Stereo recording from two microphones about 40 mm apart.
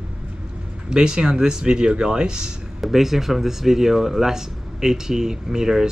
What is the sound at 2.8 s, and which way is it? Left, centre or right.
Speech, centre.